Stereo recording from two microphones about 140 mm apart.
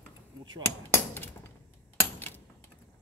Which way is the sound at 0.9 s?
15° left (ahead or behind).